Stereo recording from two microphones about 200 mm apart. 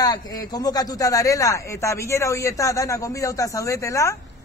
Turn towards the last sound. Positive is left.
turn(degrees=15)  # may be behind; listen again after turning